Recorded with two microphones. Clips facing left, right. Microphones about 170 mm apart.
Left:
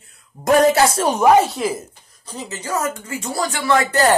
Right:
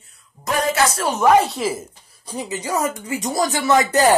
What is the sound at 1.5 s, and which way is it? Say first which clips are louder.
A woman's voice: left 1 dB; centre (ahead or behind).